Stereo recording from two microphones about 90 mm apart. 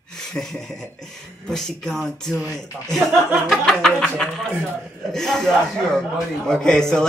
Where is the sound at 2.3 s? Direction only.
30° right (ahead or behind).